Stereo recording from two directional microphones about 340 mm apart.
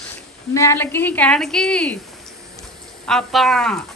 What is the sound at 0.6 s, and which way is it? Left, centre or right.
A woman's voice, centre.